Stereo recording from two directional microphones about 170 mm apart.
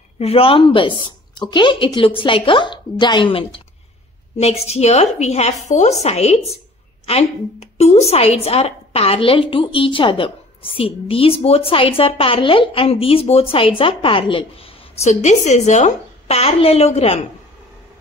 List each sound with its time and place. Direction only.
0.2 s a woman's voice: 35° left (ahead or behind)